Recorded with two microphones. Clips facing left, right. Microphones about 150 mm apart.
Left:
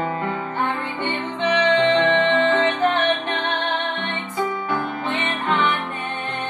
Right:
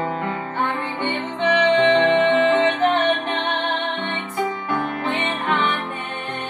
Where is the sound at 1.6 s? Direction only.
10° right (ahead or behind).